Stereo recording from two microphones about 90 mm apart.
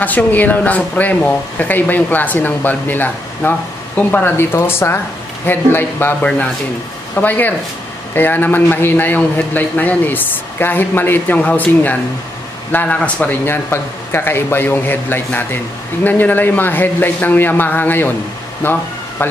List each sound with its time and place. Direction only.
0.0 s speech: 20° left (ahead or behind)
13.5 s speech: 25° left (ahead or behind)
18.6 s a sound: 20° left (ahead or behind)